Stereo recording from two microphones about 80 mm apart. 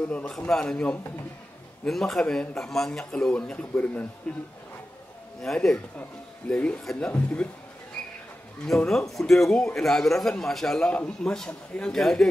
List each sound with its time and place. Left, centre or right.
0.5 s speech: centre
5.4 s speech: centre
7.1 s speech: left
8.6 s speech: centre